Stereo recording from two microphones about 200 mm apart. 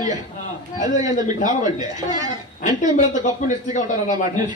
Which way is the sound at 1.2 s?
20° right (ahead or behind).